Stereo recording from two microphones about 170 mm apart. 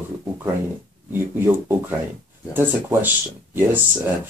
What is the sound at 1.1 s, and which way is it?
Speech, 15° right (ahead or behind).